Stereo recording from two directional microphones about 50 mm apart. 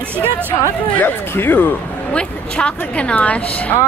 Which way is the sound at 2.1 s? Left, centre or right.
Left.